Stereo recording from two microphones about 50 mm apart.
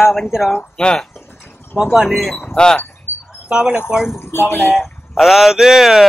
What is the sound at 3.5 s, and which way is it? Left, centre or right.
Speech, centre.